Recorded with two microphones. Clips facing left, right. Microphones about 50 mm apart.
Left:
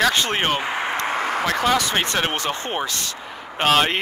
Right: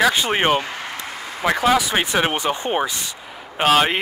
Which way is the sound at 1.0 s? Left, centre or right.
Left.